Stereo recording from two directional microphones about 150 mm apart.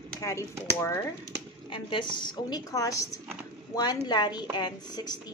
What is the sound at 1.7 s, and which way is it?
A woman's voice, 30° left (ahead or behind).